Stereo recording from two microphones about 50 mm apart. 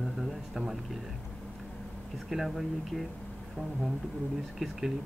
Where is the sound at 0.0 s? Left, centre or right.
Centre.